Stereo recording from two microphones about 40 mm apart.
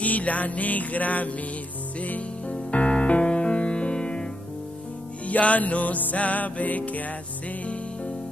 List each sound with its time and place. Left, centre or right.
0.0 s music: left
5.2 s music: left